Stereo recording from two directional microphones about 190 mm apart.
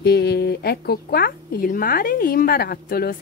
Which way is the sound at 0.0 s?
60° left (ahead or behind).